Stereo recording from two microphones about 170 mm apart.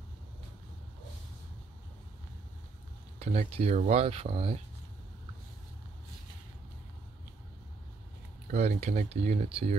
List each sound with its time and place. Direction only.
3.2 s speech: 40° right (ahead or behind)
8.5 s speech: 45° right (ahead or behind)